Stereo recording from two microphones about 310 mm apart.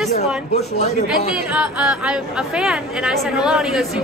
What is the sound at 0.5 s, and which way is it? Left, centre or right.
Speech, centre.